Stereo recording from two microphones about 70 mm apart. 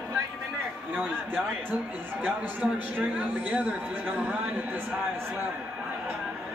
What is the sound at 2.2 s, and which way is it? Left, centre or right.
A man's voice, centre.